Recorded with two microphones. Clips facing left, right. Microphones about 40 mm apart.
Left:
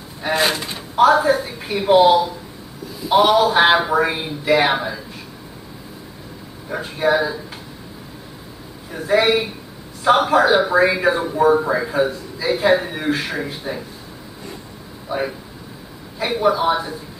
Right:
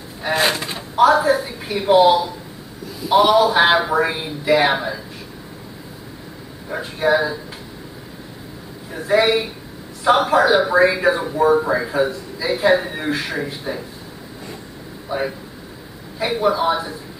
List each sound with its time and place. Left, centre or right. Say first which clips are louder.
0.2 s speech: even; centre
0.9 s a woman's voice: even; centre
6.7 s speech: even; centre
8.9 s speech: even; centre
15.0 s speech: even; centre